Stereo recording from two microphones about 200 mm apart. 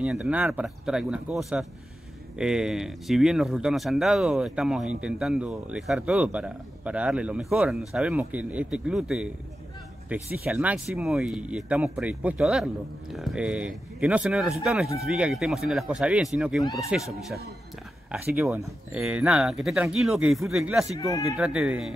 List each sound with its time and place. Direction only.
0.0 s speech: 5° right (ahead or behind)